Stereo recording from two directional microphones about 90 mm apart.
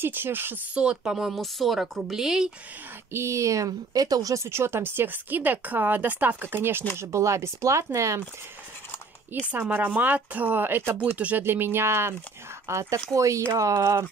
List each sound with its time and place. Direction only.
0.0 s speech: 25° right (ahead or behind)
0.7 s speech: 10° right (ahead or behind)
3.1 s speech: 30° right (ahead or behind)
7.0 s speech: 35° right (ahead or behind)
9.5 s speech: 20° right (ahead or behind); by 14.0 s 35° right (ahead or behind)